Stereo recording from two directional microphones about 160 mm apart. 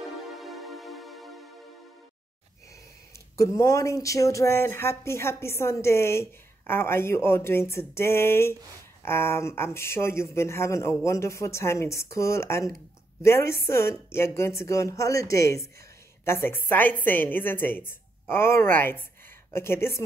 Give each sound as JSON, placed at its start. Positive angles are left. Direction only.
{"t": 0.2, "sound": "music", "side_deg": 0}
{"t": 3.3, "sound": "speech", "side_deg": 20}